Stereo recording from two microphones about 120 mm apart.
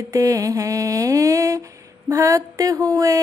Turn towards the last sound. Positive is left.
turn(degrees=-30)  # may be behind; listen again after turning